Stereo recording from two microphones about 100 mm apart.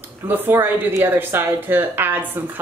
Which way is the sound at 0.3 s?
20° right (ahead or behind).